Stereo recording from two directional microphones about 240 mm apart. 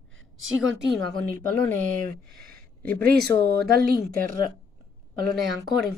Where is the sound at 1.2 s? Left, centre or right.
Centre.